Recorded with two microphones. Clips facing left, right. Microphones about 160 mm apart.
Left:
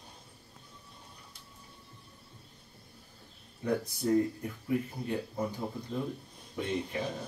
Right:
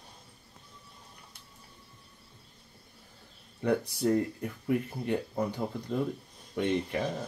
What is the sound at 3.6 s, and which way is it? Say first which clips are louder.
Speech: right 3 dB; 70° right (ahead or behind).